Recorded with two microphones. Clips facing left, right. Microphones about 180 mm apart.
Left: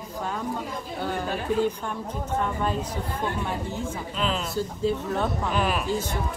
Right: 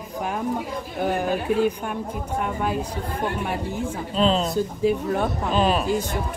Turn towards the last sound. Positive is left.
turn(degrees=-25)  # may be behind; listen again after turning